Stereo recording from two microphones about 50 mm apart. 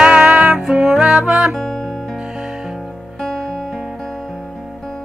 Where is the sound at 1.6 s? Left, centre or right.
Centre.